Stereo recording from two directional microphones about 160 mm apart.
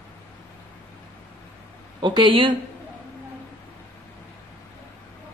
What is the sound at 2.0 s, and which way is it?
Speech, 30° right (ahead or behind).